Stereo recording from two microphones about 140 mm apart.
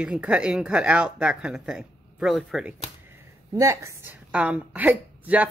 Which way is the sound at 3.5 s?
20° right (ahead or behind).